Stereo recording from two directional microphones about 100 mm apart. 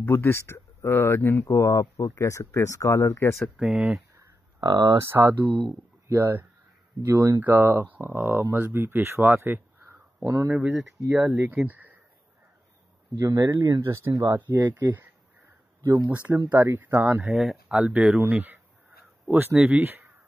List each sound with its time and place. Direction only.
0.0 s speech: 20° left (ahead or behind)
3.3 s speech: centre (ahead or behind)
4.6 s speech: 45° right (ahead or behind)
5.0 s speech: 20° right (ahead or behind)
10.5 s speech: 15° right (ahead or behind)
11.0 s speech: 30° right (ahead or behind)
11.6 s speech: 15° right (ahead or behind)
13.2 s speech: 30° right (ahead or behind)
16.1 s speech: 15° right (ahead or behind)
17.2 s speech: centre (ahead or behind)
17.7 s speech: 15° right (ahead or behind)